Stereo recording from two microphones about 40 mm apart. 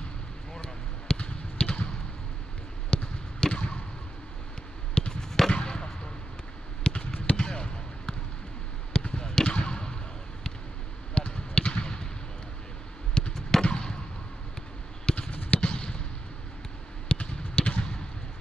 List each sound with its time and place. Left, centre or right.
0.6 s basketball bounce: left
4.9 s fireworks: centre
5.5 s basketball bounce: left
6.8 s a sound: left
7.3 s basketball bounce: centre
11.1 s basketball bounce: left
13.2 s fireworks: centre
15.1 s a sound: left
15.6 s fireworks: left
17.1 s basketball bounce: left